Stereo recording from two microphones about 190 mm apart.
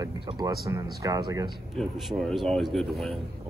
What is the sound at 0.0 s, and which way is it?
Speech, 25° right (ahead or behind).